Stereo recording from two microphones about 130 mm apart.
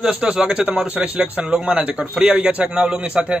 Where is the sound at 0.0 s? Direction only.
5° right (ahead or behind).